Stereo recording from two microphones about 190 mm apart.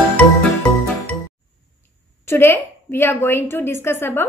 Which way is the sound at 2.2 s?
10° left (ahead or behind).